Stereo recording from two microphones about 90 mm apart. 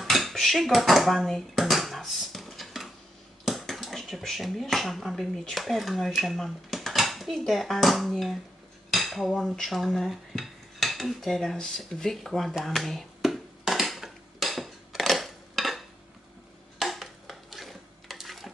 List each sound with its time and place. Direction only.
0.0 s dishes: centre (ahead or behind)
3.4 s speech: centre (ahead or behind)
8.9 s dishes: centre (ahead or behind)